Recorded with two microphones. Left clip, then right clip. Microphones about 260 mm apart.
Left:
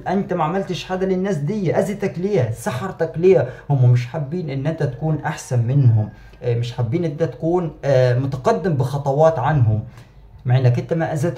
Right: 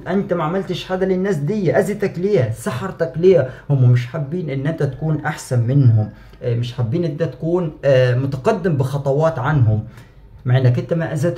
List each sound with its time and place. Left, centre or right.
0.0 s speech: centre